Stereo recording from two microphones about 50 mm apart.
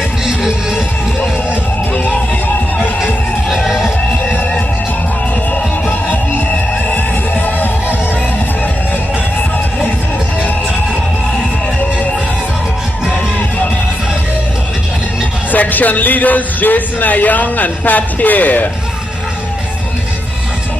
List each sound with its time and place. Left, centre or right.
0.2 s music: centre
3.4 s music: centre
5.5 s music: left
15.5 s speech: left